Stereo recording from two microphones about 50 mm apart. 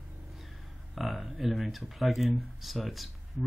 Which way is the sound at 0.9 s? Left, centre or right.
Centre.